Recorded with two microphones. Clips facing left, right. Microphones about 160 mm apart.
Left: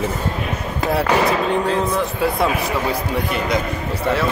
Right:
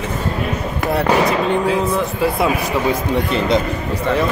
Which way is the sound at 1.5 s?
Centre (ahead or behind).